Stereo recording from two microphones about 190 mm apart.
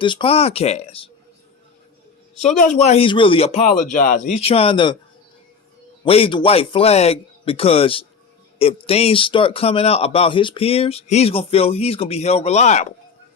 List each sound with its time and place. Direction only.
0.0 s speech: 25° left (ahead or behind)
2.4 s speech: 40° left (ahead or behind)
3.9 s speech: 45° left (ahead or behind)
4.4 s speech: 30° left (ahead or behind)
6.0 s speech: 30° left (ahead or behind)